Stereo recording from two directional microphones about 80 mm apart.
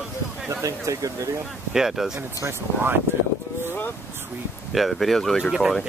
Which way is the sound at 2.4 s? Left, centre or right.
Right.